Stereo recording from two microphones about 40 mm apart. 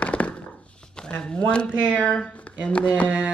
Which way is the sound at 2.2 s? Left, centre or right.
Left.